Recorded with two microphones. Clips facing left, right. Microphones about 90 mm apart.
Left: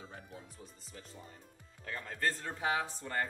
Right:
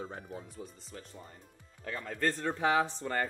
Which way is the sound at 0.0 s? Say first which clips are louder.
Right 8 dB; 50° right (ahead or behind).